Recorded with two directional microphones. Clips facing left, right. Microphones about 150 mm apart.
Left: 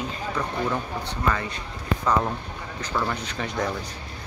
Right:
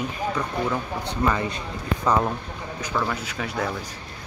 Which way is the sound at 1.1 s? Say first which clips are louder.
Right 4 dB; 15° right (ahead or behind).